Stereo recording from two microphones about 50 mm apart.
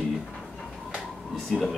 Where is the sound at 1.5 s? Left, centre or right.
Centre.